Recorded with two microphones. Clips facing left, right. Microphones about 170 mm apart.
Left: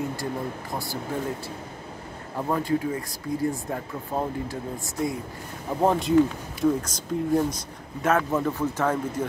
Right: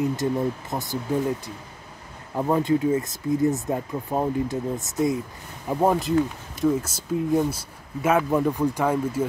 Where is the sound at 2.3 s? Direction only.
20° right (ahead or behind).